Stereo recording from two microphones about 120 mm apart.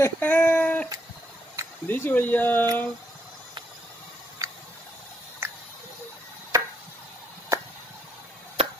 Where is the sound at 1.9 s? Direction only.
15° left (ahead or behind).